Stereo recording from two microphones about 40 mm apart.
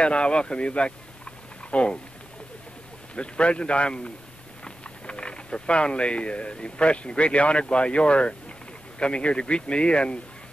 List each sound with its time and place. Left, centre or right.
0.0 s speech: left
3.2 s speech: left